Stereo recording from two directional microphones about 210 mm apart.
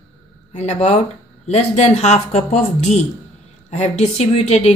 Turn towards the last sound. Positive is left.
turn(degrees=30)  # may be behind; listen again after turning